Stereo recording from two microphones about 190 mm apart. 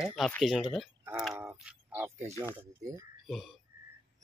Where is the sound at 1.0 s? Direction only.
5° right (ahead or behind).